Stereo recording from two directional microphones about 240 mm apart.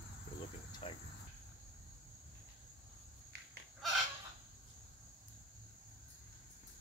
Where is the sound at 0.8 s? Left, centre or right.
Left.